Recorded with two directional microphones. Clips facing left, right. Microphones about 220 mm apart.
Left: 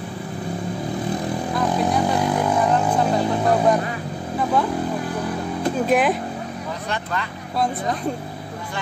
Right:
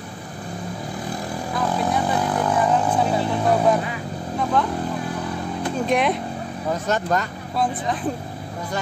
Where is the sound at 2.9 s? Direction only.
Centre (ahead or behind).